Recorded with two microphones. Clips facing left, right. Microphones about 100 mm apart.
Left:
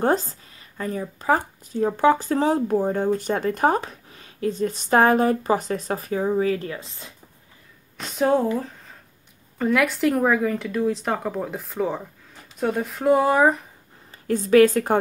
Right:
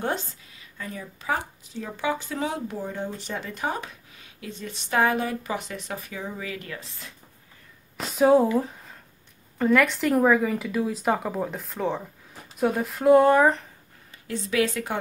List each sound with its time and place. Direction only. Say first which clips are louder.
0.0 s speech: left 7 dB; 40° left (ahead or behind)
6.7 s speech: left 4 dB; 25° left (ahead or behind)
8.0 s speech: right 2 dB; 5° right (ahead or behind)
14.1 s a woman's voice: left 10 dB; 45° left (ahead or behind)